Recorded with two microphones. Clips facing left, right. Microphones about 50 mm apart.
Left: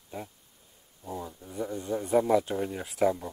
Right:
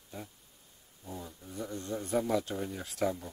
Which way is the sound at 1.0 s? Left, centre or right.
Centre.